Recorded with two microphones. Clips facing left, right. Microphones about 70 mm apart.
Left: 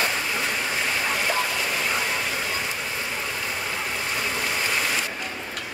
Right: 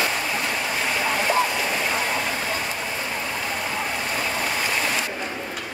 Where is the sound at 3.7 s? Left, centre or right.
Centre.